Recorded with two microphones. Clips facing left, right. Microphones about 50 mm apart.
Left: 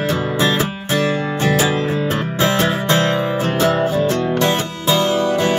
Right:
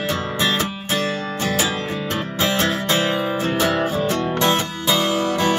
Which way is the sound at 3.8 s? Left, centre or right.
Centre.